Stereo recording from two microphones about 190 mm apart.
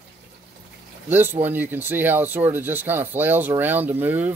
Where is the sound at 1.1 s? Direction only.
10° right (ahead or behind).